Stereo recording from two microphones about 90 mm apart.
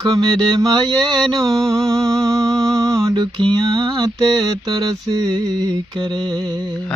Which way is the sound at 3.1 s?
55° right (ahead or behind).